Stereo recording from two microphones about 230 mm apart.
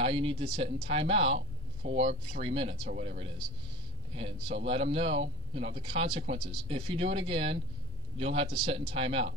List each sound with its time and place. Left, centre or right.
0.0 s speech: right